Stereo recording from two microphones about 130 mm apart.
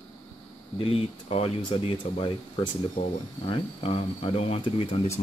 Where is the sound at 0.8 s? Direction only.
45° left (ahead or behind).